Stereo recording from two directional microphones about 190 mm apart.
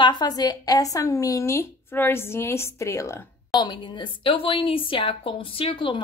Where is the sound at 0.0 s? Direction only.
25° left (ahead or behind).